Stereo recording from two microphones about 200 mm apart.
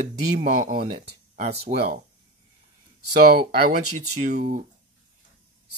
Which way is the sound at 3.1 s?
45° right (ahead or behind).